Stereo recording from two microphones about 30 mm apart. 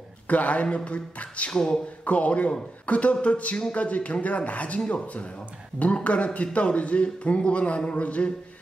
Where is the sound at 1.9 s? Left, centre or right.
Left.